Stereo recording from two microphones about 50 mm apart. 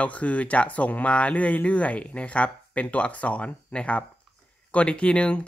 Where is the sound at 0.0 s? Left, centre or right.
Left.